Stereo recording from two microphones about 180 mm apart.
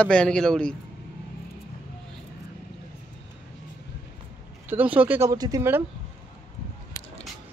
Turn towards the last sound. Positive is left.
turn(degrees=-15)  # may be behind; listen again after turning